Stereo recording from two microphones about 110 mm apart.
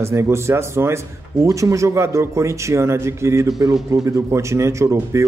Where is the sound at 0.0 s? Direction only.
25° right (ahead or behind).